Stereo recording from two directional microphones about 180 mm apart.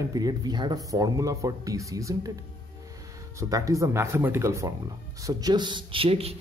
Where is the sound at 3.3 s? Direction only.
20° right (ahead or behind).